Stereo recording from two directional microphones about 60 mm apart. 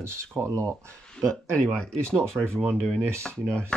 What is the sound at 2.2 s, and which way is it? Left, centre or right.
Speech, centre.